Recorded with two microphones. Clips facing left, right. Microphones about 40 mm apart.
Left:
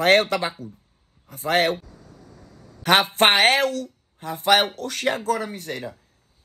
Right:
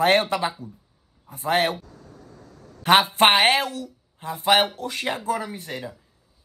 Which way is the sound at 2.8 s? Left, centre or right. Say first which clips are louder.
Right 1 dB; right.